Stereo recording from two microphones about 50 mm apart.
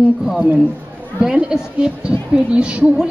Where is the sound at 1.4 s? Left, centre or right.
Centre.